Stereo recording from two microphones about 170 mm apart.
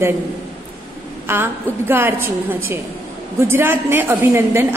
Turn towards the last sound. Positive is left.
turn(degrees=-15)  # may be behind; listen again after turning